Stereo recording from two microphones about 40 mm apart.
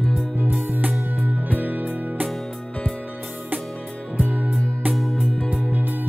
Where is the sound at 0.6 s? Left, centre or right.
Right.